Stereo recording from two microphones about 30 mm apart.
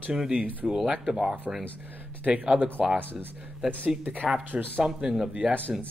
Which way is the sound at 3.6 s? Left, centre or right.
Right.